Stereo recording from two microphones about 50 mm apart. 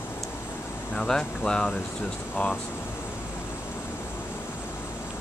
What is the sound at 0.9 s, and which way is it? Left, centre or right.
Speech, centre.